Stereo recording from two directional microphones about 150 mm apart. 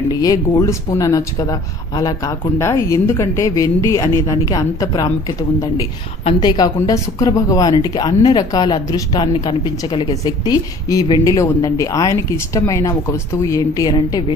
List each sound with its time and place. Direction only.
0.1 s a woman's voice: 25° left (ahead or behind)
6.4 s a woman's voice: 30° left (ahead or behind)